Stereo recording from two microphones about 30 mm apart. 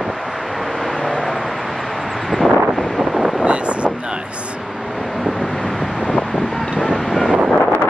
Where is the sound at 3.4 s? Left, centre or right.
Right.